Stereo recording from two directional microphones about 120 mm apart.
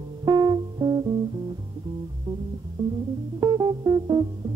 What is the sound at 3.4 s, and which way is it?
Music, 35° right (ahead or behind).